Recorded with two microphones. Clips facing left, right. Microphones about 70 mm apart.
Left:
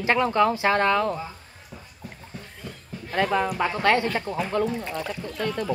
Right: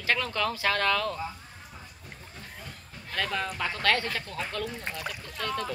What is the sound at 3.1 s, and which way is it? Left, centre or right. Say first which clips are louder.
Speech: left 8 dB; left.